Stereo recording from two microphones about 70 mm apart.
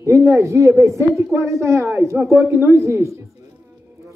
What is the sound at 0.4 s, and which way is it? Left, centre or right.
Speech, right.